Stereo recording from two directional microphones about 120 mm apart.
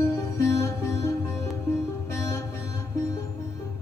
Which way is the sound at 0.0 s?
20° left (ahead or behind).